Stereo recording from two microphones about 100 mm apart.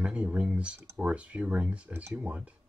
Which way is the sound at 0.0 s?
10° right (ahead or behind).